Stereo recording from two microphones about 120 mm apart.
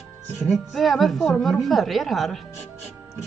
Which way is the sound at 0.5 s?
Centre (ahead or behind).